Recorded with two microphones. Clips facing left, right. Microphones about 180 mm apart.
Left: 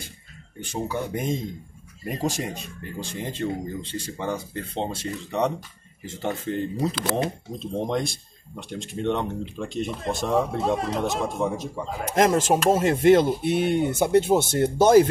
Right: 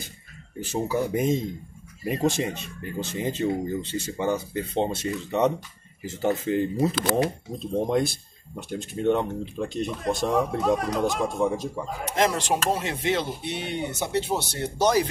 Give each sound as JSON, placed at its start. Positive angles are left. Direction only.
{"t": 0.7, "sound": "speech", "side_deg": -5}
{"t": 10.6, "sound": "speech", "side_deg": 25}
{"t": 11.3, "sound": "speech", "side_deg": 0}
{"t": 12.0, "sound": "speech", "side_deg": 45}